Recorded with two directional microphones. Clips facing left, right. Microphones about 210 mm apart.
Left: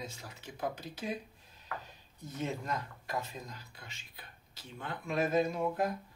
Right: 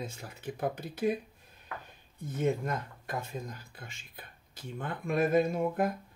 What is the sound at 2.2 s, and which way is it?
Speech, 50° right (ahead or behind).